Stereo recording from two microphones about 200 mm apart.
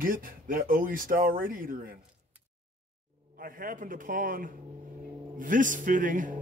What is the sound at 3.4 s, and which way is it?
A man's voice, 45° right (ahead or behind).